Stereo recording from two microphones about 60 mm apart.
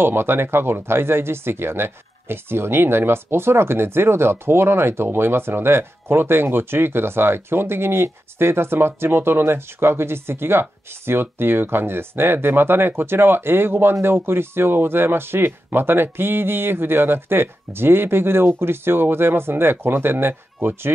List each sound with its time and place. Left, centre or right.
0.0 s speech: right